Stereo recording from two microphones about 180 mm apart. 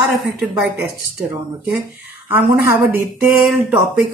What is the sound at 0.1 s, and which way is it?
Speech, 5° right (ahead or behind).